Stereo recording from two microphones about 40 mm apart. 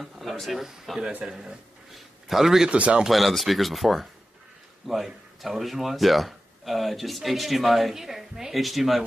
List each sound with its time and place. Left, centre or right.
0.0 s speech: centre
1.3 s a sound: centre
2.7 s speech: right
3.1 s speech: centre